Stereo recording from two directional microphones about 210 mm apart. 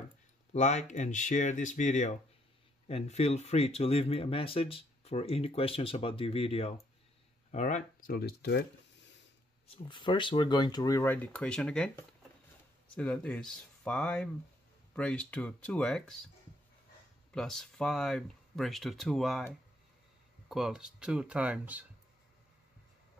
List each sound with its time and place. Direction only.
0.5 s speech: 35° left (ahead or behind); by 8.6 s 50° left (ahead or behind)
9.8 s speech: 20° left (ahead or behind); by 16.3 s centre (ahead or behind)
17.3 s speech: centre (ahead or behind)
20.4 s speech: centre (ahead or behind)